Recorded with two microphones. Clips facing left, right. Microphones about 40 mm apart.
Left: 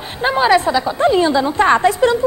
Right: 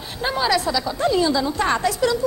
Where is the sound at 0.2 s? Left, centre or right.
Left.